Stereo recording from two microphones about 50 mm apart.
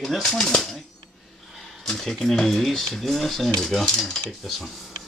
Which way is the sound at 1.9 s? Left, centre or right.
Centre.